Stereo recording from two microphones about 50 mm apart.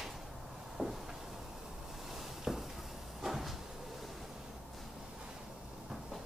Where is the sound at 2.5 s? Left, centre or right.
Centre.